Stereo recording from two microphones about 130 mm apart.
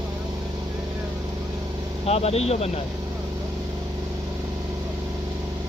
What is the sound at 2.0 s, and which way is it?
Speech, 50° left (ahead or behind).